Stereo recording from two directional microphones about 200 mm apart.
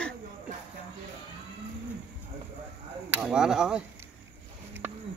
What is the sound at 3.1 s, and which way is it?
Speech, 5° right (ahead or behind).